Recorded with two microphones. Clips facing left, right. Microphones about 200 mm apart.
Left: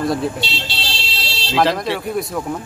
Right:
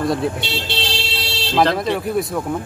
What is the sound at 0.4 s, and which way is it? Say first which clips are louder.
Speech: right 2 dB; 55° right (ahead or behind).